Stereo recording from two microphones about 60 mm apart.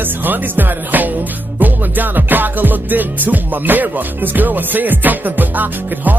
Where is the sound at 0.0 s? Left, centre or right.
Right.